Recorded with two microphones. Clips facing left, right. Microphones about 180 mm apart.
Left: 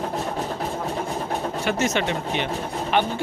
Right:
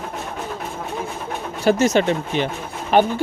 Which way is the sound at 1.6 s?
35° right (ahead or behind).